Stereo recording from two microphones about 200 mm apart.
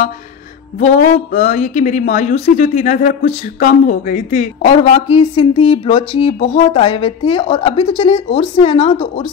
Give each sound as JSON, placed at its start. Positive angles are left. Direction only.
{"t": 0.7, "sound": "speech", "side_deg": 35}